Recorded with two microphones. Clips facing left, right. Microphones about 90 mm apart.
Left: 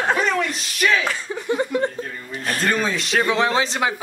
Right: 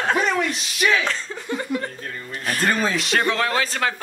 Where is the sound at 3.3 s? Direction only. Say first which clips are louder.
Left 2 dB; 20° left (ahead or behind).